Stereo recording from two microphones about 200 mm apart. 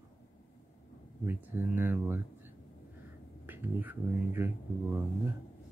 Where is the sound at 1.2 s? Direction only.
10° right (ahead or behind).